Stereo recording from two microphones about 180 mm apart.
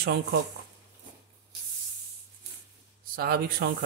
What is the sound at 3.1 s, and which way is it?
Speech, 60° right (ahead or behind).